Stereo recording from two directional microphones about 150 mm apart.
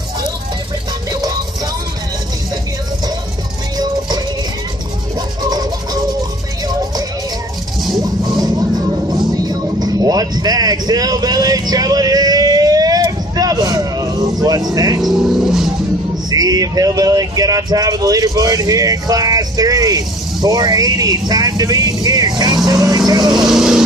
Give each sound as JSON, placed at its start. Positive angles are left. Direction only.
{"t": 3.7, "sound": "music", "side_deg": -25}
{"t": 5.4, "sound": "toothbrush", "side_deg": -25}
{"t": 8.0, "sound": "music", "side_deg": -25}
{"t": 9.5, "sound": "vehicle", "side_deg": -25}
{"t": 15.0, "sound": "vehicle", "side_deg": 0}
{"t": 16.3, "sound": "speech", "side_deg": -25}
{"t": 23.3, "sound": "vehicle", "side_deg": -5}